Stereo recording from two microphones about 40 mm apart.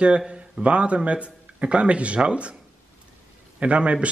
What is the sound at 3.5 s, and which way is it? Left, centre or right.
Speech, right.